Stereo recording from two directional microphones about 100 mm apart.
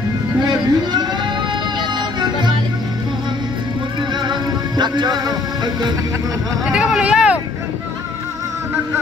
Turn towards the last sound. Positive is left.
turn(degrees=-10)  # may be behind; listen again after turning